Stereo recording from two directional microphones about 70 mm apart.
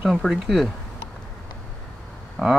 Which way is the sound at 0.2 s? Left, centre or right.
Centre.